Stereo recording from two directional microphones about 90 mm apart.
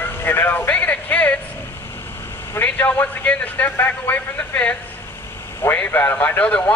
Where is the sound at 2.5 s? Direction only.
20° left (ahead or behind).